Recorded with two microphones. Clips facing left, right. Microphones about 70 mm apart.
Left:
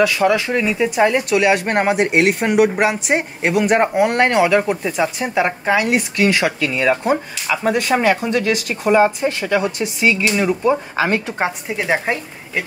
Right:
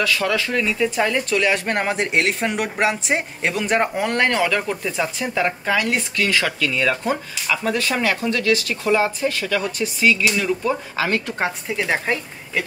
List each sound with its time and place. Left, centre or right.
0.0 s speech: centre
4.5 s speech: centre